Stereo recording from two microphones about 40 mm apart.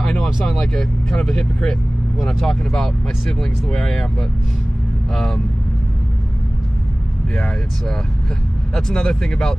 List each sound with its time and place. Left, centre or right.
0.0 s vehicle: centre
1.2 s speech: left
2.1 s speech: centre
8.7 s speech: centre